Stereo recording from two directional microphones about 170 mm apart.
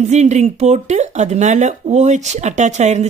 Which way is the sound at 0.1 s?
40° right (ahead or behind).